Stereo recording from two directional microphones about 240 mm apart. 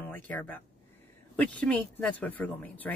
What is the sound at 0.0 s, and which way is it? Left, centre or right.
Speech, centre.